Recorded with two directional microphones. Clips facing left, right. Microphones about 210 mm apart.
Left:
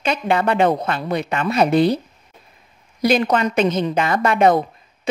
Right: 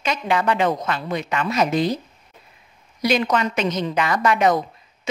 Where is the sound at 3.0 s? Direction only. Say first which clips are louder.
Left 3 dB; 55° left (ahead or behind).